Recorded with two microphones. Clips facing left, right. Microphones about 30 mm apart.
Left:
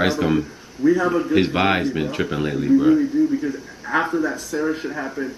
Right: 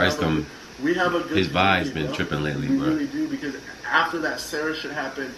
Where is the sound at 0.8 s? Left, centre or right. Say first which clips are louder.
Left 4 dB; right.